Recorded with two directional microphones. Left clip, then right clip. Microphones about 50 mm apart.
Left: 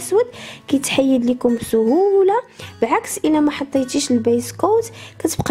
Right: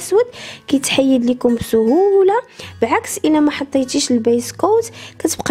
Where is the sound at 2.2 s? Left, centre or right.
Right.